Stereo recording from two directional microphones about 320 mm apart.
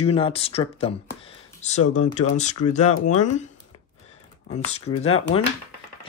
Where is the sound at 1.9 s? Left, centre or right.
Left.